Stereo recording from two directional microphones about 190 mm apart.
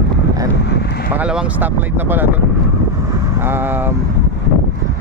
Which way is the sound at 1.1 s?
5° right (ahead or behind).